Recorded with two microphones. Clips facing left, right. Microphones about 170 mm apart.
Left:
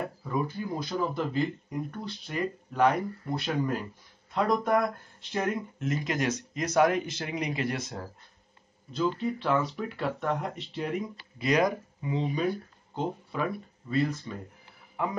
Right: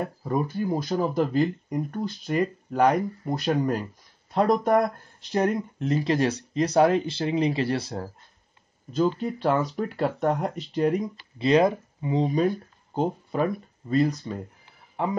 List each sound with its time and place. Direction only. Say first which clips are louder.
0.2 s speech: right 6 dB; 45° right (ahead or behind)
8.9 s speech: right 4 dB; 40° right (ahead or behind)